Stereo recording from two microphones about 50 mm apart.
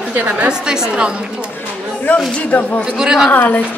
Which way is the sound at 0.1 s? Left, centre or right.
Right.